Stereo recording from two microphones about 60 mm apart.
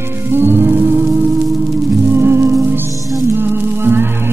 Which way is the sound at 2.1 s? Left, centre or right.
Right.